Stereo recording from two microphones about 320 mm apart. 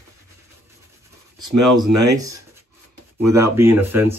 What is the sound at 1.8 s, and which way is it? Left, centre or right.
Speech, right.